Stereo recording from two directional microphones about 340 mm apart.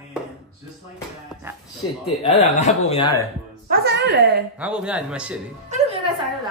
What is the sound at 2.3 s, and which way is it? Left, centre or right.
Speech, centre.